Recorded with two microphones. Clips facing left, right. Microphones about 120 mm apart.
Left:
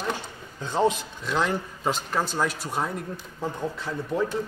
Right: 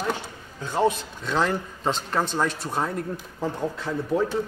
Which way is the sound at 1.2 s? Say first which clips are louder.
Right 2 dB; centre (ahead or behind).